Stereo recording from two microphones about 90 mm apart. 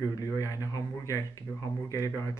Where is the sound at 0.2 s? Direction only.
40° left (ahead or behind).